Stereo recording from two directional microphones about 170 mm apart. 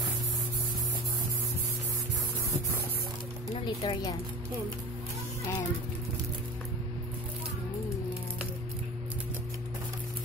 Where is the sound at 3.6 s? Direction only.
25° left (ahead or behind).